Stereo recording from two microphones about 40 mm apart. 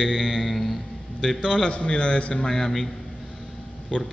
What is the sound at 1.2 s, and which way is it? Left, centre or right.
A man's voice, centre.